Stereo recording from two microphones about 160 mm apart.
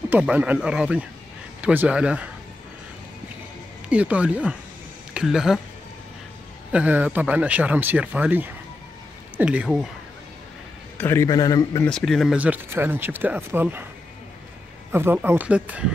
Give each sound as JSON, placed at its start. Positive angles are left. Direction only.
{"t": 0.1, "sound": "speech", "side_deg": -10}
{"t": 3.9, "sound": "speech", "side_deg": -10}
{"t": 6.7, "sound": "speech", "side_deg": -10}
{"t": 11.0, "sound": "a man's voice", "side_deg": 15}
{"t": 11.8, "sound": "speech", "side_deg": 5}
{"t": 14.9, "sound": "speech", "side_deg": -15}